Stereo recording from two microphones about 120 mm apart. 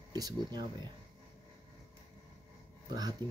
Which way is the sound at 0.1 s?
35° right (ahead or behind).